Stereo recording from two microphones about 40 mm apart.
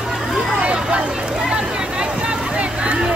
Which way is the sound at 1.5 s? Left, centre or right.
Right.